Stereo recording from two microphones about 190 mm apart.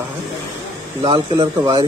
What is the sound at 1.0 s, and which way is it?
Speech, 25° right (ahead or behind).